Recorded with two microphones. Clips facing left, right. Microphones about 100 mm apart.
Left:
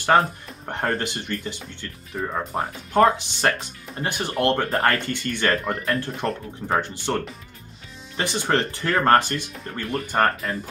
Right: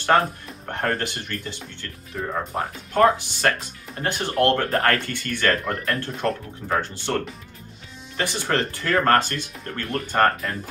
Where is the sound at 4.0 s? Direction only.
15° left (ahead or behind).